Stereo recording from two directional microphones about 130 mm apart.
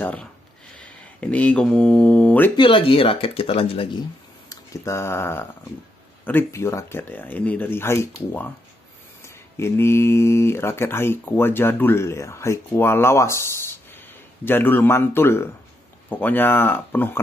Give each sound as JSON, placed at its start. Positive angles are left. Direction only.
{"t": 0.0, "sound": "speech", "side_deg": 10}
{"t": 2.5, "sound": "speech", "side_deg": 40}
{"t": 4.5, "sound": "speech", "side_deg": 20}